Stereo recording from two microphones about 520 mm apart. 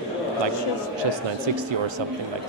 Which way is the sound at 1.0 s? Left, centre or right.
Right.